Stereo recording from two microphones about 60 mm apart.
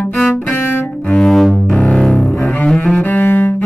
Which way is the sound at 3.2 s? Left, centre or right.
Left.